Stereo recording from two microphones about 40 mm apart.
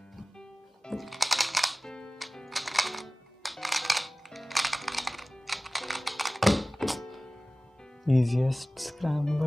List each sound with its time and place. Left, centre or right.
0.9 s music: centre
1.9 s music: left
2.1 s music: centre
8.0 s speech: centre